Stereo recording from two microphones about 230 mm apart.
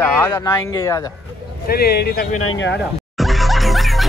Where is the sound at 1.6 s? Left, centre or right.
Left.